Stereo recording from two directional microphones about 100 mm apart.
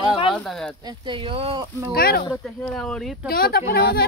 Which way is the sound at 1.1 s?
65° right (ahead or behind).